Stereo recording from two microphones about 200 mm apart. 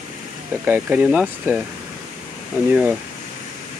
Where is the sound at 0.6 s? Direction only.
10° right (ahead or behind).